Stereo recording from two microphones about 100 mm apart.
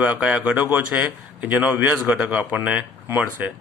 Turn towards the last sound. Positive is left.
turn(degrees=-15)  # may be behind; listen again after turning